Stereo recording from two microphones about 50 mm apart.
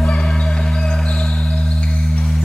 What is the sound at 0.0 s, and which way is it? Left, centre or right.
Music, left.